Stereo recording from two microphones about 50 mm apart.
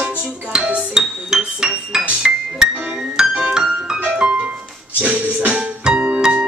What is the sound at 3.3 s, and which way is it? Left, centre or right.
Music, right.